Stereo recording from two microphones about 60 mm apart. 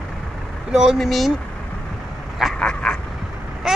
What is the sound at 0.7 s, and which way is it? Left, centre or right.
Speech, centre.